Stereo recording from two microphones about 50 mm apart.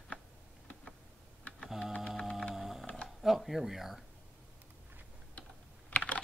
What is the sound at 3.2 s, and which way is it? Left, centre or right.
Speech, centre.